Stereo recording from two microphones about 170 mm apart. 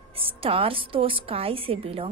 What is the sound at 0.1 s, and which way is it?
A woman's voice, 35° right (ahead or behind).